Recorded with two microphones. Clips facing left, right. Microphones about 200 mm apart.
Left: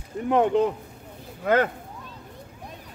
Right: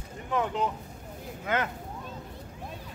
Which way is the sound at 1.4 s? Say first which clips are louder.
Left 9 dB; 60° left (ahead or behind).